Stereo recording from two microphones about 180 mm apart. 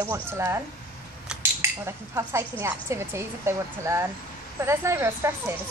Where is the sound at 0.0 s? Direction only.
15° right (ahead or behind).